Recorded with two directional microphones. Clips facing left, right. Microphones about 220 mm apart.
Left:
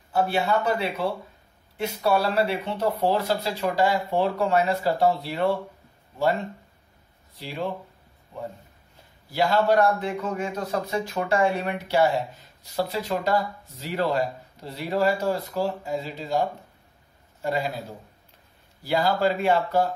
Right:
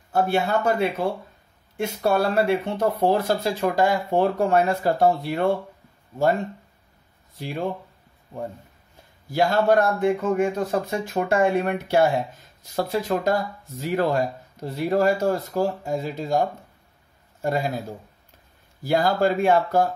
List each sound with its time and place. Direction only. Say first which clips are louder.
0.1 s speech: right 2 dB; 50° right (ahead or behind)
9.3 s a man's voice: right 2 dB; 50° right (ahead or behind)
18.8 s speech: right 3 dB; 45° right (ahead or behind)